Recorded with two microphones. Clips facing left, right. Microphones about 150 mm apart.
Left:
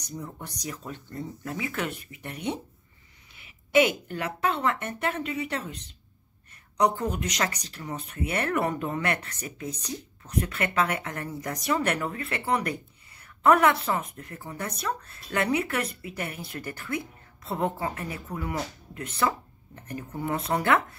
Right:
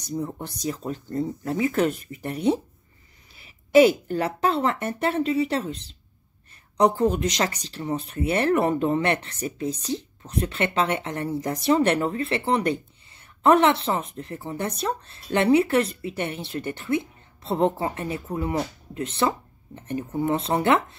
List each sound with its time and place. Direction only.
0.0 s speech: 30° right (ahead or behind)